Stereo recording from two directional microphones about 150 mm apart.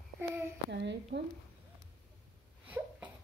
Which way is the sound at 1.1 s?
90° right.